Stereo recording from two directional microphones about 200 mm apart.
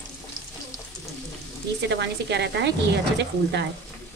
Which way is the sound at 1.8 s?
60° right (ahead or behind).